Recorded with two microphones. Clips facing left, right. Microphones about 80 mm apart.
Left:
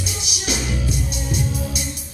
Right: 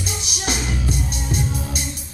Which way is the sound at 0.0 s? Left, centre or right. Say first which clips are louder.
Right 1 dB; right.